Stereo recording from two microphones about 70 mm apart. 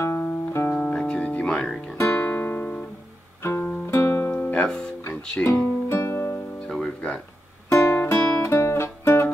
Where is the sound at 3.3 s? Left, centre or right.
Left.